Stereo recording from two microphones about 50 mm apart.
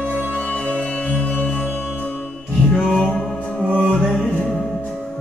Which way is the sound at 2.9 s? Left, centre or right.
Centre.